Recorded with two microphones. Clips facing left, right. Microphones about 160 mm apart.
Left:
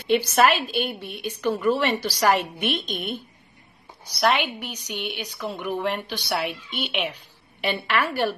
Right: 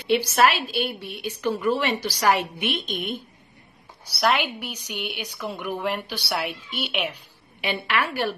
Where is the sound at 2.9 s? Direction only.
10° right (ahead or behind).